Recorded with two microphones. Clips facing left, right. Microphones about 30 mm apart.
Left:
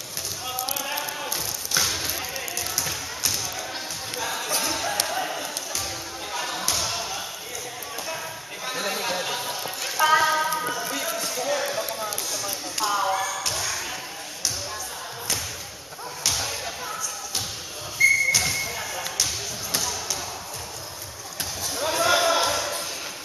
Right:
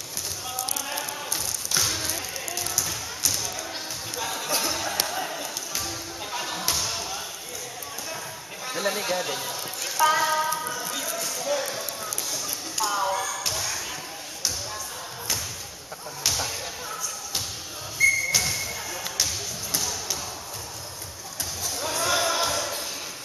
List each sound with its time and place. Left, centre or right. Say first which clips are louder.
0.5 s a sound: left 3 dB; centre
2.8 s music: left 1 dB; centre
6.7 s a sound: left 1 dB; centre
8.6 s speech: right 1 dB; centre
11.3 s clip-clop: left 2 dB; centre
12.8 s basketball bounce: left 2 dB; centre
16.3 s whip: left 1 dB; centre
18.0 s whistle: left 2 dB; centre
18.4 s basketball bounce: left 3 dB; centre
21.7 s basketball bounce: left 4 dB; centre